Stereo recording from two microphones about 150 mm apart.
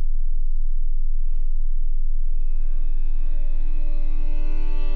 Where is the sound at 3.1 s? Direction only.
50° left (ahead or behind).